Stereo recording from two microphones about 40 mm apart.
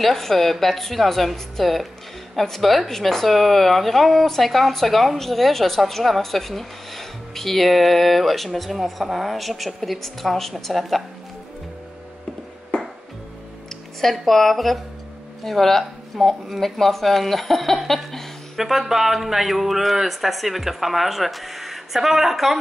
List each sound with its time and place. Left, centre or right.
0.0 s a woman's voice: centre
12.7 s music: left
14.0 s a woman's voice: centre
18.6 s a woman's voice: centre